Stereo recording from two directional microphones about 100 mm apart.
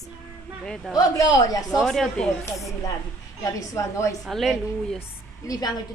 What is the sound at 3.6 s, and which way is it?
Speech, 30° left (ahead or behind).